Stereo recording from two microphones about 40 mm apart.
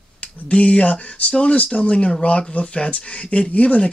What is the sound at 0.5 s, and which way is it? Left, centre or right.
Speech, left.